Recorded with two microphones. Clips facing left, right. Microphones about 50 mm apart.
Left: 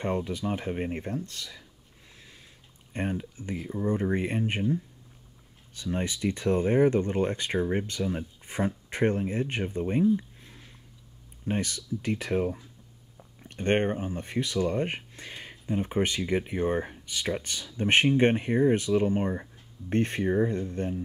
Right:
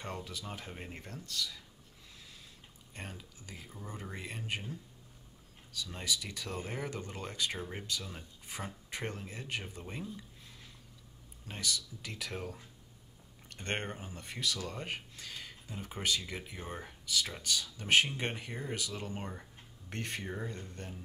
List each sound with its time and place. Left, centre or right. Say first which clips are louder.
0.0 s speech: left 13 dB; left
2.1 s a sound: left 3 dB; left
2.9 s speech: left 15 dB; left
5.7 s speech: left 7 dB; left
10.1 s a sound: left 18 dB; left
11.4 s speech: left 8 dB; left